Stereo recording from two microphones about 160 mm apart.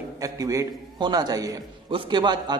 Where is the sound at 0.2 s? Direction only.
20° right (ahead or behind).